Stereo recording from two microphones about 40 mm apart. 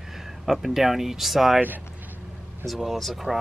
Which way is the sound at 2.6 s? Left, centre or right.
Centre.